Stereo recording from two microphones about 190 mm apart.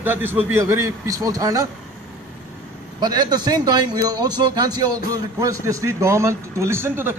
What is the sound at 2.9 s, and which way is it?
A man's voice, 20° right (ahead or behind).